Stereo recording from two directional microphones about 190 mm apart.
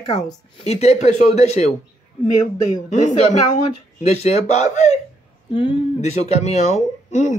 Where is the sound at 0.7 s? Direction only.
35° left (ahead or behind).